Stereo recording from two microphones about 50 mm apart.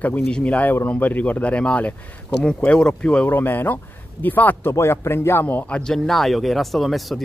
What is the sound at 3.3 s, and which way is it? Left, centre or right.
Speech, left.